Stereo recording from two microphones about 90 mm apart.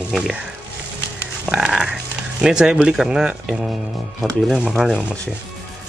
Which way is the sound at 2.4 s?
10° right (ahead or behind).